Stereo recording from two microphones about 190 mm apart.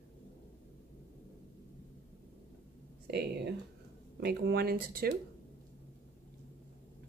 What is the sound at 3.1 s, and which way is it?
Speech, 60° right (ahead or behind).